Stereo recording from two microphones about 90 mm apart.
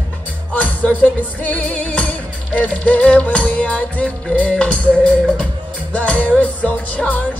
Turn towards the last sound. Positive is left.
turn(degrees=15)  # may be behind; listen again after turning